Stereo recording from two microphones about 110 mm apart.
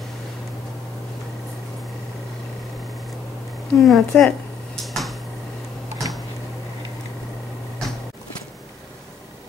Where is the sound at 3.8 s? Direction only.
Centre (ahead or behind).